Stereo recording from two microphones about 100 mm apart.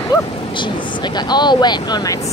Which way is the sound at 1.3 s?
45° left (ahead or behind).